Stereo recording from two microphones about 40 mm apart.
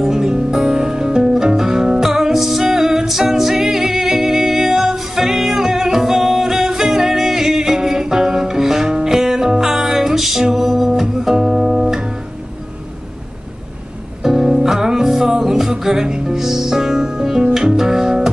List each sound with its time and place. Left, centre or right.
0.0 s music: centre
14.2 s music: centre